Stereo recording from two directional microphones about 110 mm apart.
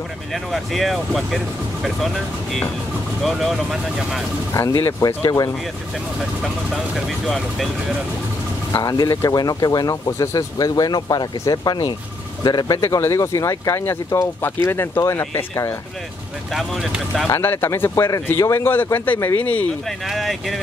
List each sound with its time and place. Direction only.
0.3 s speech: centre (ahead or behind)
3.2 s speech: centre (ahead or behind)
4.6 s speech: 30° left (ahead or behind)
6.4 s speech: centre (ahead or behind)
8.8 s speech: 35° left (ahead or behind)
12.8 s speech: 30° left (ahead or behind)
16.5 s speech: centre (ahead or behind)
17.4 s speech: 20° left (ahead or behind)
20.1 s speech: centre (ahead or behind)